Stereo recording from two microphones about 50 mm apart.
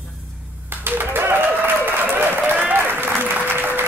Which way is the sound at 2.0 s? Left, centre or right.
Right.